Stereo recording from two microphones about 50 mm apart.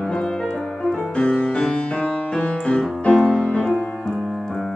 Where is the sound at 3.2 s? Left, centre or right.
Left.